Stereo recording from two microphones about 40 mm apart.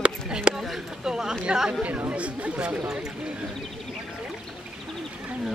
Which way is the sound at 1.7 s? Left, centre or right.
Right.